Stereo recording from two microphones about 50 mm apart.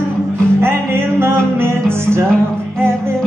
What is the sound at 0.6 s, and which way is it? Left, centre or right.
Music, right.